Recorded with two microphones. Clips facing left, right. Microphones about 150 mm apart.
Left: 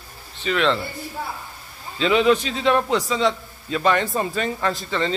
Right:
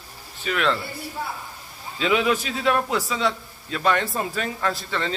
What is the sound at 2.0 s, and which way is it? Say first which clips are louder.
A man's voice: left 4 dB; 5° right (ahead or behind).